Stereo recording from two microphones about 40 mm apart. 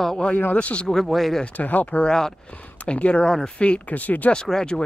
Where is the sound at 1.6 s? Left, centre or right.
Left.